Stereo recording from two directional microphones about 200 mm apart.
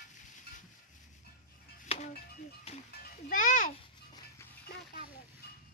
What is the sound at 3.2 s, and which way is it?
Music, 40° left (ahead or behind).